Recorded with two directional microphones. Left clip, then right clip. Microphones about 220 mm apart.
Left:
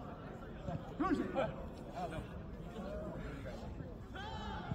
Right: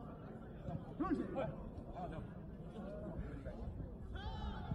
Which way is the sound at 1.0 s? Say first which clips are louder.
Left 4 dB; centre (ahead or behind).